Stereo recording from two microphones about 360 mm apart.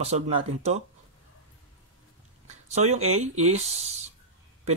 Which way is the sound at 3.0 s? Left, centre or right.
Centre.